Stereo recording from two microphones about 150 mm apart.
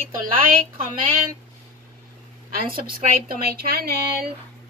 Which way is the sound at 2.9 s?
75° right (ahead or behind).